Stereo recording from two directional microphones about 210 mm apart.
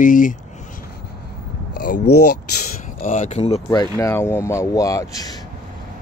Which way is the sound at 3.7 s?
15° left (ahead or behind).